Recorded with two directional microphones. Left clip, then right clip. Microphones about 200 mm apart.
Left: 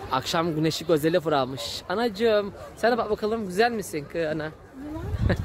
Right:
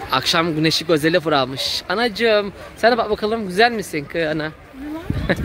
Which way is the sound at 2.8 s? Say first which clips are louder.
Right 7 dB; 20° right (ahead or behind).